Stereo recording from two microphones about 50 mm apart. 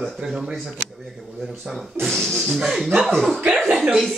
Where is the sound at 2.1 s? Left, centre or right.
Centre.